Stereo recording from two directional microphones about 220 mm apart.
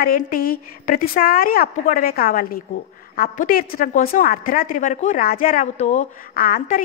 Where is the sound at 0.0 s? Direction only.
40° left (ahead or behind).